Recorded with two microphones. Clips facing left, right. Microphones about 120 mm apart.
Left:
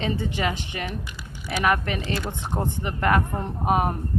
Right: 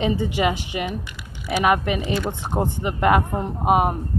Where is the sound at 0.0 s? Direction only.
15° right (ahead or behind).